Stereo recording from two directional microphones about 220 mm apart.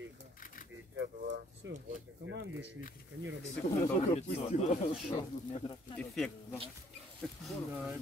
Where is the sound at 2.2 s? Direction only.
55° right (ahead or behind).